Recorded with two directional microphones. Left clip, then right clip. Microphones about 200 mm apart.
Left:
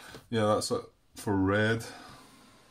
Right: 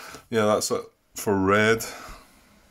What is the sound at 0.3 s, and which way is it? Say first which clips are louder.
Speech: right 6 dB; 30° right (ahead or behind).